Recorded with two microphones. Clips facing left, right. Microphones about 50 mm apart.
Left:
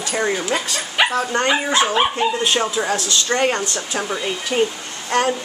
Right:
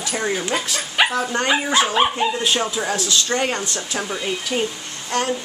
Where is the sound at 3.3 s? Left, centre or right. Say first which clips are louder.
Left 3 dB; centre.